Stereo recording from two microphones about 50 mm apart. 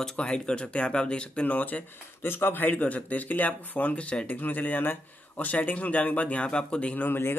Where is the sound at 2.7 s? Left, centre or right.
Left.